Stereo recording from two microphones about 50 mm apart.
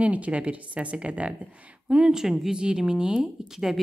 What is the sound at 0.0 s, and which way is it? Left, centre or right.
Speech, right.